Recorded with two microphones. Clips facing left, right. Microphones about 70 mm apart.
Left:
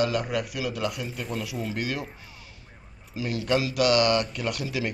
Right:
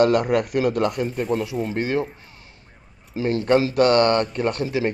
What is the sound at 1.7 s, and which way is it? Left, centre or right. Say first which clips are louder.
Speech: right 9 dB; right.